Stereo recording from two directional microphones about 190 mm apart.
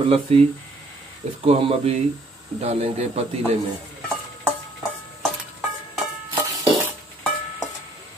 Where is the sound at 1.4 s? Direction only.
30° right (ahead or behind).